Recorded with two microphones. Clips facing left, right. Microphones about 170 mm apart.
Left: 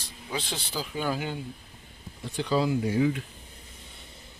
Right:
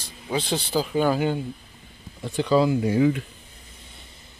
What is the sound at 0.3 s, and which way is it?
Speech, 60° right (ahead or behind).